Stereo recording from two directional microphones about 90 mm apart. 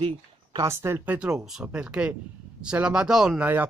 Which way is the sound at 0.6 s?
30° right (ahead or behind).